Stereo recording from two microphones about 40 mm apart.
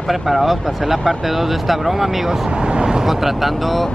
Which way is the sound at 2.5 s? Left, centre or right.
Right.